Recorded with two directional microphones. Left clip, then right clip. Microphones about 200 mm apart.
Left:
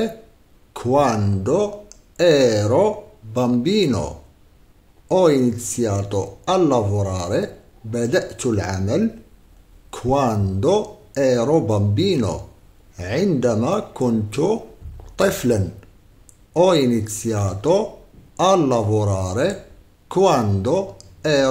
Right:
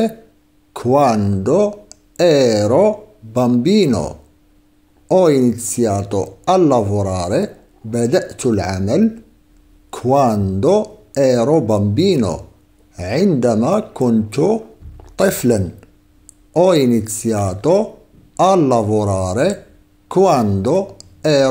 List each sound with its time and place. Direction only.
0.7 s speech: 25° right (ahead or behind)